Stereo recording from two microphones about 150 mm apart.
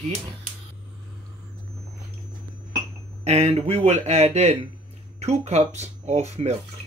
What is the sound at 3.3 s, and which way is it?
Speech, 45° right (ahead or behind).